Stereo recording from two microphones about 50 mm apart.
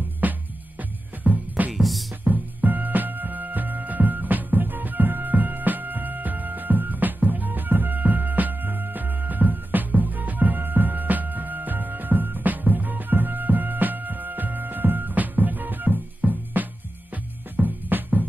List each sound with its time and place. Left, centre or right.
0.2 s music: right
1.7 s music: centre
2.2 s music: right